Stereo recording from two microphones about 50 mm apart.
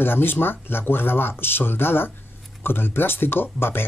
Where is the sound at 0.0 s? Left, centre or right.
Left.